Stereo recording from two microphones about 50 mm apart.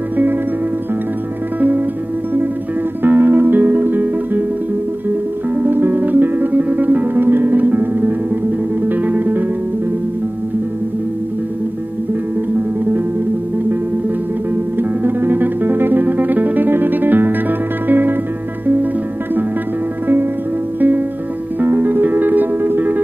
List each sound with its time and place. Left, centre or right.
3.0 s music: right
5.6 s music: right
14.8 s music: right
21.5 s music: right